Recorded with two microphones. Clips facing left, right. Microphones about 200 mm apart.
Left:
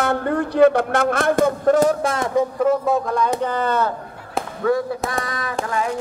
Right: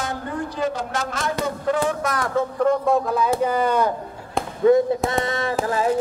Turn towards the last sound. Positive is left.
turn(degrees=-30)  # may be behind; listen again after turning